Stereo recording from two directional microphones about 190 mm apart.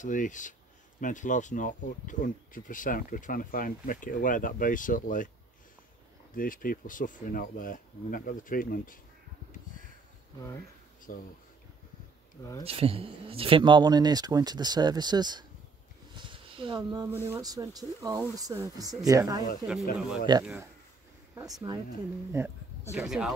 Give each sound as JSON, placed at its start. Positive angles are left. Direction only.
{"t": 0.0, "sound": "speech", "side_deg": 40}
{"t": 6.3, "sound": "speech", "side_deg": 45}
{"t": 11.1, "sound": "speech", "side_deg": 45}
{"t": 12.6, "sound": "speech", "side_deg": -30}
{"t": 16.2, "sound": "a sound", "side_deg": -25}
{"t": 17.3, "sound": "speech", "side_deg": -20}
{"t": 19.7, "sound": "speech", "side_deg": 0}
{"t": 21.4, "sound": "speech", "side_deg": -20}
{"t": 22.9, "sound": "speech", "side_deg": 0}